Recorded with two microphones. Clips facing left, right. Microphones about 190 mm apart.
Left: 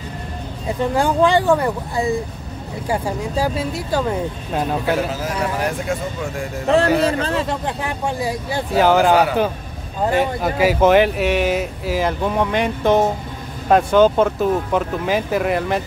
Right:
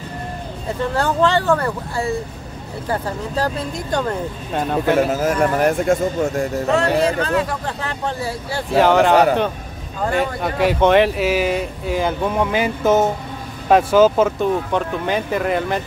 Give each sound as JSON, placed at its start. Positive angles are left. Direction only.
{"t": 0.9, "sound": "speech", "side_deg": 15}
{"t": 5.0, "sound": "a man's voice", "side_deg": -50}
{"t": 7.1, "sound": "speech", "side_deg": 30}
{"t": 7.6, "sound": "speech", "side_deg": 15}
{"t": 8.7, "sound": "speech", "side_deg": 0}